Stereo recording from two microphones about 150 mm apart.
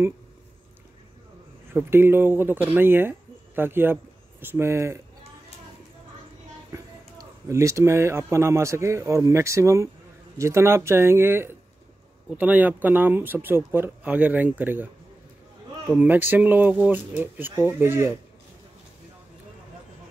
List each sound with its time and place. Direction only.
1.7 s speech: 15° right (ahead or behind)
6.7 s speech: 20° right (ahead or behind)
15.9 s speech: 10° right (ahead or behind)